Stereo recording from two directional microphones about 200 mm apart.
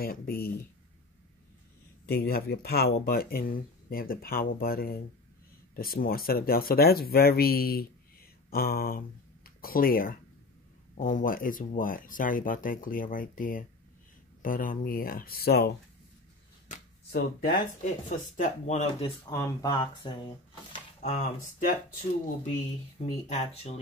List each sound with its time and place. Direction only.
0.0 s speech: 50° left (ahead or behind)
2.0 s speech: 50° left (ahead or behind)
17.1 s speech: 50° left (ahead or behind)
19.0 s speech: 15° left (ahead or behind)
21.0 s speech: 40° left (ahead or behind)
23.0 s speech: 35° left (ahead or behind)